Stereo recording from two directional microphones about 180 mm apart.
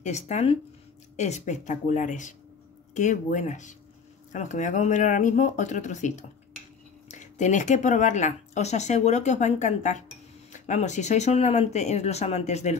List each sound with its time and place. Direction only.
0.0 s speech: 40° left (ahead or behind)